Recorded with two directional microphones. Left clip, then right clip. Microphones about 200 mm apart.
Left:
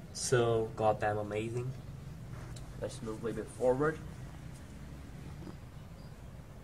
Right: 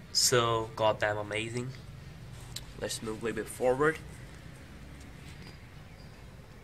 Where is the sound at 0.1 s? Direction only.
10° right (ahead or behind).